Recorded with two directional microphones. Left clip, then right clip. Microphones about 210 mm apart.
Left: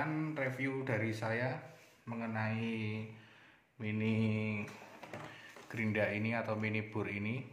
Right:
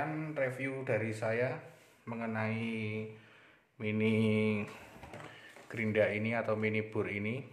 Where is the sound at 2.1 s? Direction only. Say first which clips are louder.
Right 3 dB; 30° right (ahead or behind).